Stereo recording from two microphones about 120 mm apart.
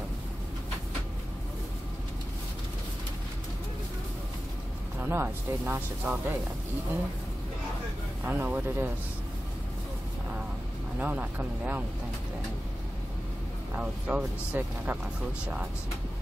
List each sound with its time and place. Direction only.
5.0 s speech: 20° right (ahead or behind)
8.2 s speech: 15° right (ahead or behind)
11.0 s speech: 15° right (ahead or behind)
13.7 s speech: 10° right (ahead or behind)